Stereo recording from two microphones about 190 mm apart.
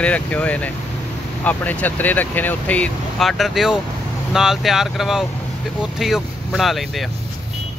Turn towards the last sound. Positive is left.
turn(degrees=0)  # may be behind; listen again after turning